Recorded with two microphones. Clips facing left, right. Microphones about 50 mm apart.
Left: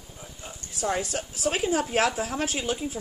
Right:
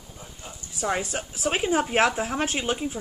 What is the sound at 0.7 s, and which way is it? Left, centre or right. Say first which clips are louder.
A woman's voice: right 1 dB; right.